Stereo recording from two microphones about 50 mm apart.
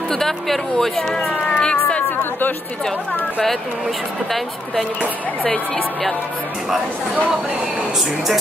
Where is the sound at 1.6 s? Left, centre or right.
Centre.